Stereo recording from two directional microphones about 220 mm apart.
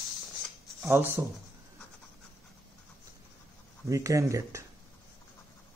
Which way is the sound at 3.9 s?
15° right (ahead or behind).